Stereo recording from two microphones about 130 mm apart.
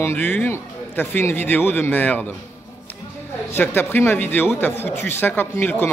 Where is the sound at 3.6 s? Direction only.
15° left (ahead or behind).